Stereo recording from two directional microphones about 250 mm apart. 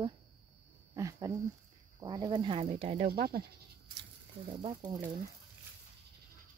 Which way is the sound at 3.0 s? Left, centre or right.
Right.